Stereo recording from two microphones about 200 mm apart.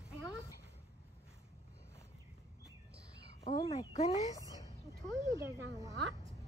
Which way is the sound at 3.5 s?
30° left (ahead or behind).